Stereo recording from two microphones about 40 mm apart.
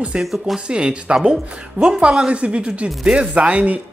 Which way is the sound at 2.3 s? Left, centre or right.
Right.